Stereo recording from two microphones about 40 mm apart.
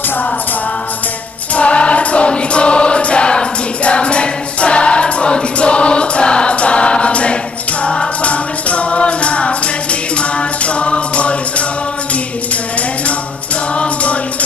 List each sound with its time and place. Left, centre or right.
1.5 s choir: left
7.8 s music: left